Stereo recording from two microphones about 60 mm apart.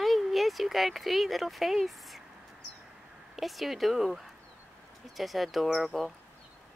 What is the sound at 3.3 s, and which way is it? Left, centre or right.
Speech, centre.